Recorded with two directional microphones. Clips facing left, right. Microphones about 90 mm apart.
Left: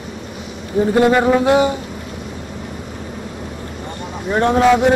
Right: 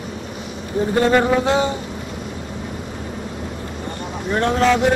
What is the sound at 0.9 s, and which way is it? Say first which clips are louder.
Speech: left 2 dB; 10° left (ahead or behind).